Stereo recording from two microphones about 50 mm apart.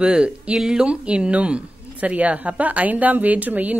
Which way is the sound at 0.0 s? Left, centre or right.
Centre.